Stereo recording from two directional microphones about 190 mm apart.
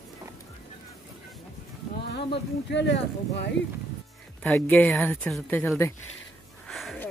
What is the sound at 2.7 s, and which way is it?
Speech, 70° left (ahead or behind).